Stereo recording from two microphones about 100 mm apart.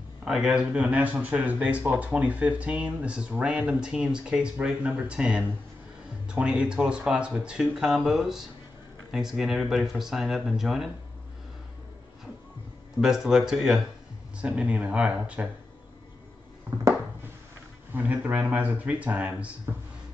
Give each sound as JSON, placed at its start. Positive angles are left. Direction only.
{"t": 0.2, "sound": "speech", "side_deg": -5}
{"t": 13.0, "sound": "speech", "side_deg": -5}
{"t": 17.9, "sound": "speech", "side_deg": -15}